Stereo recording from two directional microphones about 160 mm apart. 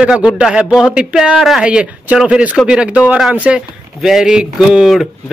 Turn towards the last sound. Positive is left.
turn(degrees=0)  # may be behind; listen again after turning